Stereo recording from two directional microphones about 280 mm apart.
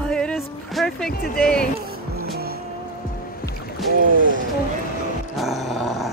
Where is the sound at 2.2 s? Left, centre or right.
Right.